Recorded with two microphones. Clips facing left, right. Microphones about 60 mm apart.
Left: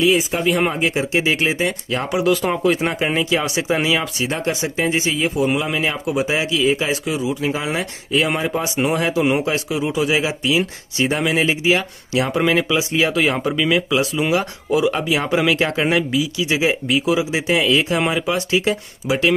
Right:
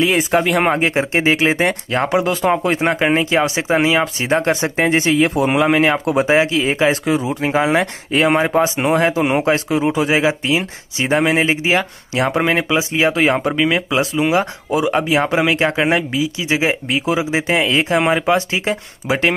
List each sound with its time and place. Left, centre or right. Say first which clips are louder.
0.0 s speech: right 2 dB; right
0.7 s a man's voice: right 2 dB; right
1.5 s speech: right 4 dB; right
1.9 s a man's voice: right 2 dB; right
4.4 s a man's voice: right 4 dB; right